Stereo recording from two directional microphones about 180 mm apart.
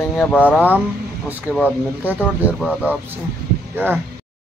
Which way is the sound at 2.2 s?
5° left (ahead or behind).